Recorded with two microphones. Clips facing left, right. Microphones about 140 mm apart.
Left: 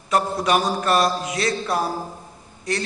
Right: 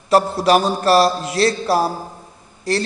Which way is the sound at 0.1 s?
30° right (ahead or behind).